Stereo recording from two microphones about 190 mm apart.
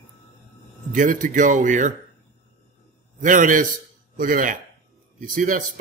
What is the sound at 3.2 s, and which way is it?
A man's voice, 40° right (ahead or behind).